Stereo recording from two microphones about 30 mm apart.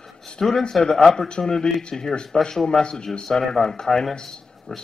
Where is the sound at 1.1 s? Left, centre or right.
Left.